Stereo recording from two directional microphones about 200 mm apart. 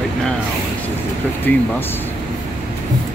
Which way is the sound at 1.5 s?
10° left (ahead or behind).